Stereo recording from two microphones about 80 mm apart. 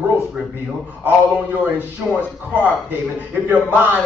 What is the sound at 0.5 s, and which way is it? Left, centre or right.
A man's voice, right.